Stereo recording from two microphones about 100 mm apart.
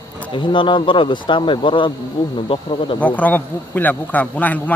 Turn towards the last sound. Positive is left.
turn(degrees=15)  # may be behind; listen again after turning